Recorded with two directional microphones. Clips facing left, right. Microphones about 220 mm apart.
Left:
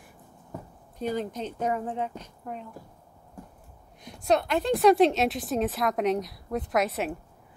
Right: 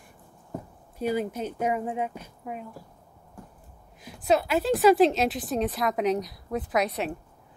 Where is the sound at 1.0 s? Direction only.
10° right (ahead or behind).